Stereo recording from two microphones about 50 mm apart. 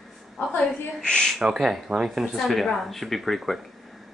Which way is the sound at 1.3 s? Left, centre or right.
Centre.